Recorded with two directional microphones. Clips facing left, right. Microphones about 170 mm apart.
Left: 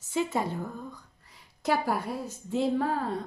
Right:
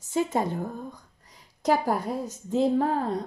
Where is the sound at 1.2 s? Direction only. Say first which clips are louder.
Right 5 dB; 40° right (ahead or behind).